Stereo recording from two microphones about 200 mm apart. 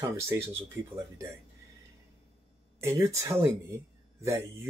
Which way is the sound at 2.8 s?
15° right (ahead or behind).